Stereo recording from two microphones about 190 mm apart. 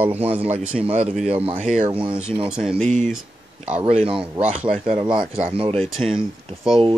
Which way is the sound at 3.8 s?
30° right (ahead or behind).